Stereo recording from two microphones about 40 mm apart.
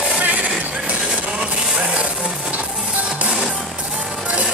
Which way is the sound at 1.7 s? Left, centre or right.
Right.